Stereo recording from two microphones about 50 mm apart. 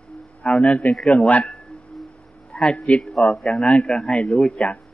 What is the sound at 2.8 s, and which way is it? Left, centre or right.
A man's voice, left.